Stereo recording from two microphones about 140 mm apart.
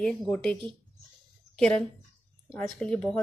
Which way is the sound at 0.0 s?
5° left (ahead or behind).